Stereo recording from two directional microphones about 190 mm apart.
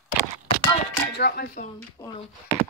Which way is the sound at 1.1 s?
55° left (ahead or behind).